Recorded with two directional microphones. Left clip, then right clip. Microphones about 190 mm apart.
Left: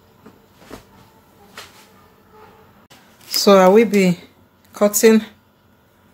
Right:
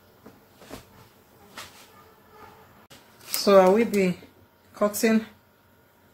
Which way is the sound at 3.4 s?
50° left (ahead or behind).